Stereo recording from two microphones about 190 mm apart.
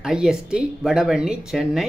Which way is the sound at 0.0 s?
5° right (ahead or behind).